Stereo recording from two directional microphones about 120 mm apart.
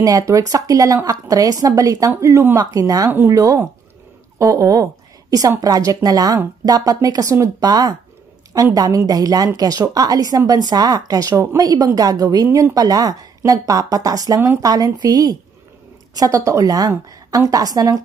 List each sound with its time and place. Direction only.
0.0 s a woman's voice: 30° right (ahead or behind)